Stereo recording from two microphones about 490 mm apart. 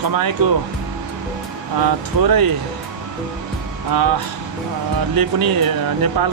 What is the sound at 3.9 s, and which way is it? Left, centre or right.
Speech, right.